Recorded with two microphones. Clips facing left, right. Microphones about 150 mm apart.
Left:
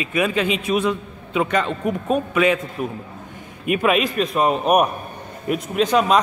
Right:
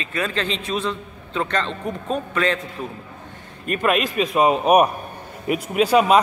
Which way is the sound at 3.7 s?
5° left (ahead or behind).